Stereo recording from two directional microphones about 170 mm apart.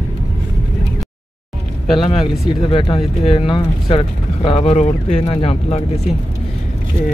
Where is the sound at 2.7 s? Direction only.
30° left (ahead or behind).